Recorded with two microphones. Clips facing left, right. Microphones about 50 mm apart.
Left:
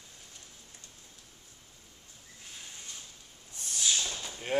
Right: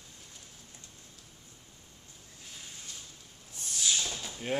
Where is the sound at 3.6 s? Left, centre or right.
Centre.